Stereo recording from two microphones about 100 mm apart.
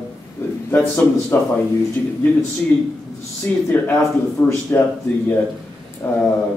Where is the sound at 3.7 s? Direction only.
20° left (ahead or behind).